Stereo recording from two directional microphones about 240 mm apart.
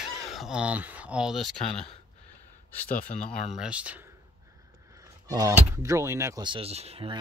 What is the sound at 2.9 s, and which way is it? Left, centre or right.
Speech, left.